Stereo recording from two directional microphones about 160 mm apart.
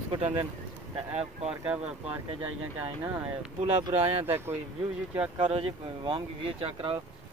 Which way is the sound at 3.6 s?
40° right (ahead or behind).